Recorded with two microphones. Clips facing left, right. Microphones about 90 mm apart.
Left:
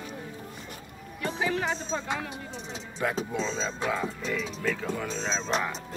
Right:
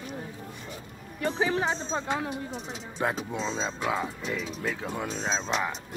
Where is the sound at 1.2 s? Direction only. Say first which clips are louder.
Right 2 dB; 25° right (ahead or behind); by 5.5 s 5° right (ahead or behind).